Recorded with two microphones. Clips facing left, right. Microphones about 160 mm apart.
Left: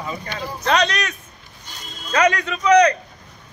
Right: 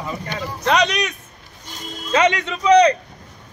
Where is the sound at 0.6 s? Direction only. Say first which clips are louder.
Right 1 dB; 15° right (ahead or behind).